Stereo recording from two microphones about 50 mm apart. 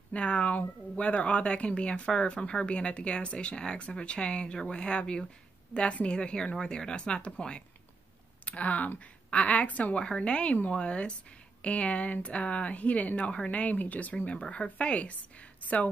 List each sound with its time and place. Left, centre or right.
0.1 s speech: left